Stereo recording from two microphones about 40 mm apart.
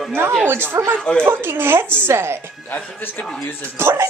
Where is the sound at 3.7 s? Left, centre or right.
Right.